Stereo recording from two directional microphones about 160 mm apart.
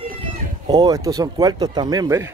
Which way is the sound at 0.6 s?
25° right (ahead or behind).